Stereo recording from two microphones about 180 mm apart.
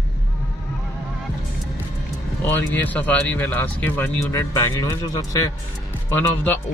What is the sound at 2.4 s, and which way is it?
Speech, 10° left (ahead or behind).